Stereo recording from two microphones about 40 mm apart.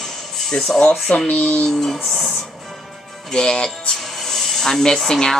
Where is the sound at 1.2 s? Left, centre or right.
Left.